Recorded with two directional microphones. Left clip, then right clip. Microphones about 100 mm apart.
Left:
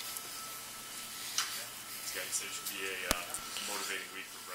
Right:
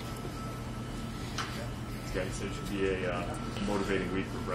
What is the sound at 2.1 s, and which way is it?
Speech, 15° right (ahead or behind).